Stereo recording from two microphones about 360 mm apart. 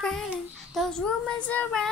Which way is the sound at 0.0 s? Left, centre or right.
Centre.